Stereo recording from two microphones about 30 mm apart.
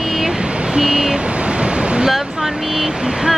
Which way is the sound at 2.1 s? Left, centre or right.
Centre.